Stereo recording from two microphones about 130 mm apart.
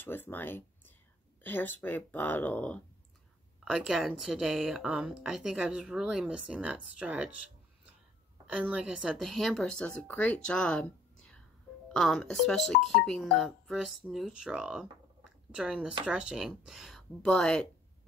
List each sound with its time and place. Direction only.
0.0 s speech: 15° left (ahead or behind)
3.7 s speech: 5° right (ahead or behind)
8.5 s speech: 10° right (ahead or behind)